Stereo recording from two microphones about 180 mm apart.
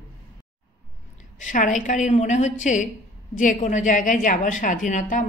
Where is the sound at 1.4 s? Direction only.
45° left (ahead or behind).